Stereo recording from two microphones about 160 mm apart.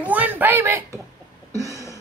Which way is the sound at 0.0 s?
10° right (ahead or behind).